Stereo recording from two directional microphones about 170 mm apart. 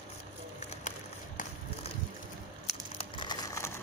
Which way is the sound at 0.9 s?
45° left (ahead or behind).